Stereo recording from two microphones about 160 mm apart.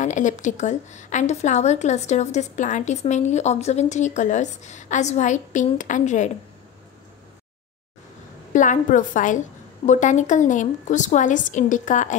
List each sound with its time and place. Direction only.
0.0 s a woman's voice: 50° left (ahead or behind)
8.5 s a woman's voice: 55° left (ahead or behind)